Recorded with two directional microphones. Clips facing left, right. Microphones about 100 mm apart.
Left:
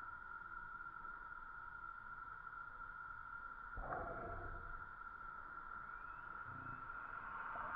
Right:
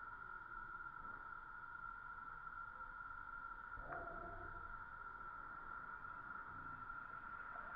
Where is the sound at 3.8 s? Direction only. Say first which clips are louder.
Left 5 dB; 60° left (ahead or behind).